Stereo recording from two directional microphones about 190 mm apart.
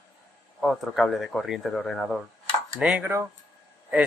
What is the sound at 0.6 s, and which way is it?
Speech, centre (ahead or behind).